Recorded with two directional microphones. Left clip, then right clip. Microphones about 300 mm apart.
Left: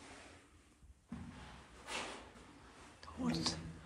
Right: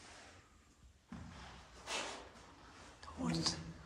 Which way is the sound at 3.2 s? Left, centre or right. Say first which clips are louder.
Even; centre.